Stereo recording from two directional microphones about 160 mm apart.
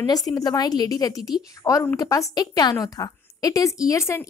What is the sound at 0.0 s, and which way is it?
A woman's voice, 25° left (ahead or behind).